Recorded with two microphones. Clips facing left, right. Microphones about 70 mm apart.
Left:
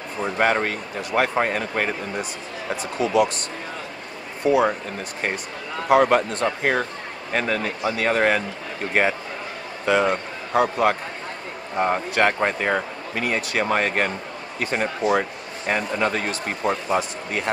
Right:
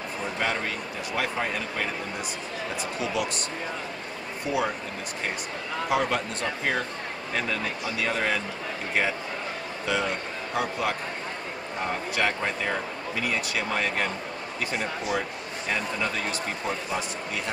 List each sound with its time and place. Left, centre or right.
0.2 s speech: left
4.5 s speech: left
5.9 s a man's voice: left
11.8 s speech: left